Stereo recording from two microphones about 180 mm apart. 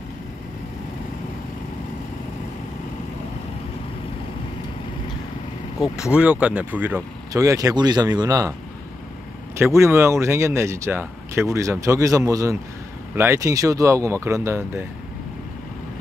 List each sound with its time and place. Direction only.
6.1 s speech: 5° right (ahead or behind)
9.6 s speech: 15° right (ahead or behind)